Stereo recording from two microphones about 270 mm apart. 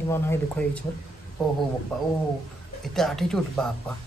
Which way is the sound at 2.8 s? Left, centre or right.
Centre.